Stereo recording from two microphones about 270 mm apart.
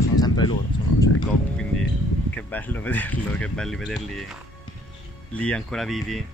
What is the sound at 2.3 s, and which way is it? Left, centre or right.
Speech, centre.